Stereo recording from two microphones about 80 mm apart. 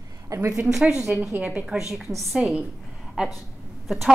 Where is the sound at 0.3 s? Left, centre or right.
Right.